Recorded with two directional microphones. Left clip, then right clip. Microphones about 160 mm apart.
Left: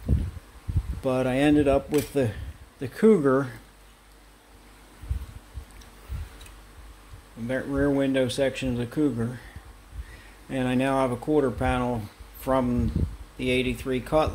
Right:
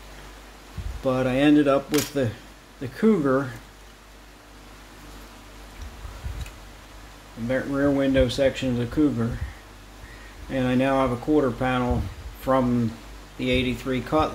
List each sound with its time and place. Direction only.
1.0 s speech: 45° left (ahead or behind)
2.8 s speech: 50° left (ahead or behind)
7.4 s speech: 40° left (ahead or behind)
10.5 s speech: 45° left (ahead or behind)